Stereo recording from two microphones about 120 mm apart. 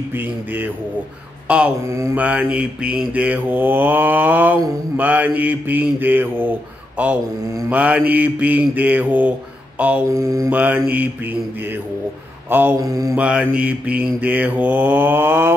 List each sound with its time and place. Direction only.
0.1 s mantra: 15° right (ahead or behind)
10.1 s mantra: 25° right (ahead or behind)
10.5 s mantra: 15° right (ahead or behind)
12.8 s mantra: 30° right (ahead or behind)
13.1 s mantra: 10° right (ahead or behind)